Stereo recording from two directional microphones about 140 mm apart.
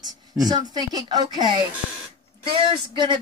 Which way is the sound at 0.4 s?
30° right (ahead or behind).